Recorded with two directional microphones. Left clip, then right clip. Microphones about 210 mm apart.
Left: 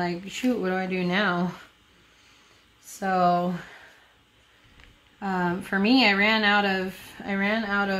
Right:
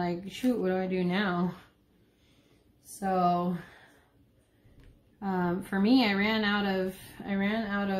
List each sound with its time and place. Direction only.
0.0 s speech: 25° left (ahead or behind)
3.0 s speech: 35° left (ahead or behind)
5.2 s speech: 25° left (ahead or behind)